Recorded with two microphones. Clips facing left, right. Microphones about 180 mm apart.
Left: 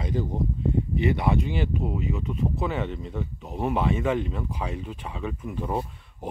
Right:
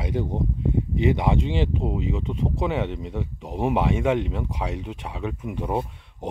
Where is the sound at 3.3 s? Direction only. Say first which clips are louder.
Right 4 dB; 25° right (ahead or behind).